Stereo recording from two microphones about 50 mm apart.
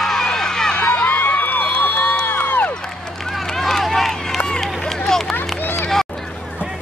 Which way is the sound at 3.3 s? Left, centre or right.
Centre.